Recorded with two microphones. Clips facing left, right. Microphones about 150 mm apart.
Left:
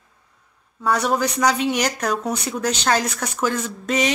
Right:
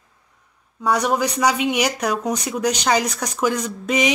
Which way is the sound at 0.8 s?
10° right (ahead or behind).